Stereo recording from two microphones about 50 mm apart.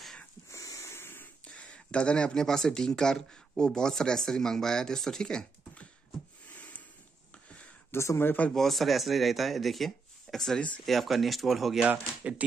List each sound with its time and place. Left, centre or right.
0.5 s wheeze: left
1.0 s a sound: left
1.4 s speech: left
6.5 s a sound: left
7.9 s speech: left
8.5 s speech: centre
12.2 s speech: right